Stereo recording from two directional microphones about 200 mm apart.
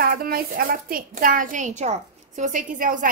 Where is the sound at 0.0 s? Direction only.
50° right (ahead or behind).